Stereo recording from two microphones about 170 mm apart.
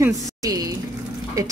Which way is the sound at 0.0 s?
20° right (ahead or behind).